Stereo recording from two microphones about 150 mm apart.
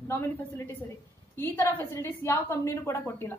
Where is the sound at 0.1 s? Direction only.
15° left (ahead or behind).